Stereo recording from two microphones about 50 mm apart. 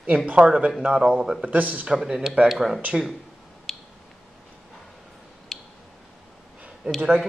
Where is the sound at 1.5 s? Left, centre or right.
Right.